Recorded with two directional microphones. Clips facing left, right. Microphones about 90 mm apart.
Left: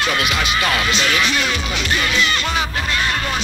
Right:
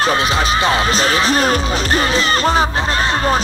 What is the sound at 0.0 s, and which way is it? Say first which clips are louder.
Music: right 4 dB; 35° right (ahead or behind).